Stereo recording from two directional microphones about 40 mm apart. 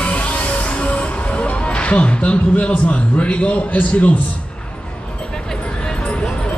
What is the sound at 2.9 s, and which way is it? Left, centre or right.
A man's voice, left.